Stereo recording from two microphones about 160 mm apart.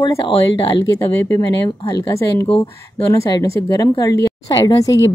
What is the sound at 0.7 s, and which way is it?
Speech, 25° left (ahead or behind).